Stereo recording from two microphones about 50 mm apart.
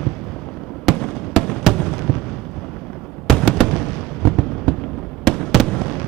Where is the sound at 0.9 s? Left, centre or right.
Centre.